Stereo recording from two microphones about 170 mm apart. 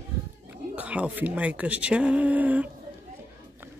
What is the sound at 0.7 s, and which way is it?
Speech, 10° right (ahead or behind).